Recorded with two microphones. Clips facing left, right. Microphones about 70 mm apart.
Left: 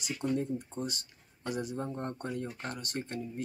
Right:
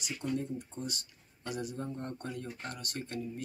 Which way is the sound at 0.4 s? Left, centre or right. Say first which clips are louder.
Left 4 dB; left.